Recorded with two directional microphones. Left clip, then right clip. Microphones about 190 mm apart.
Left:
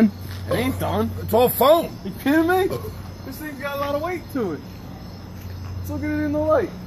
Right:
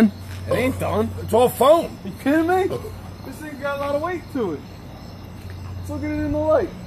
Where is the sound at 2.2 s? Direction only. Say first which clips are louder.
Even; 15° right (ahead or behind).